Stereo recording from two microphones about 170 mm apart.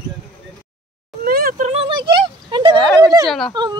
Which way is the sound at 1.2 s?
60° right (ahead or behind).